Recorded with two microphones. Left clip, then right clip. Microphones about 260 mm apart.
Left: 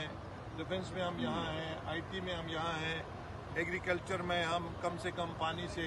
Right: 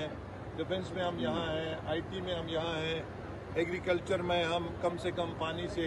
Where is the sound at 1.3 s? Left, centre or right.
Left.